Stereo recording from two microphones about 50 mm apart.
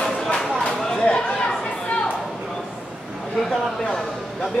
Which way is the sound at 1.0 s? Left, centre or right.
Left.